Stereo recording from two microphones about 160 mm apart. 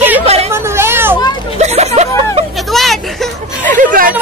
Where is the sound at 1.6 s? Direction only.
45° right (ahead or behind).